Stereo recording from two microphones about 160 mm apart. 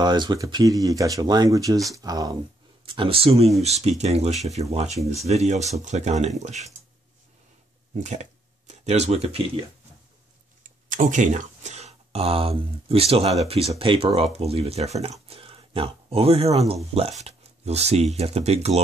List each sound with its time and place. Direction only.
0.0 s speech: 25° right (ahead or behind)
2.8 s speech: 35° right (ahead or behind)
7.9 s speech: 45° right (ahead or behind)
10.6 s speech: 55° right (ahead or behind)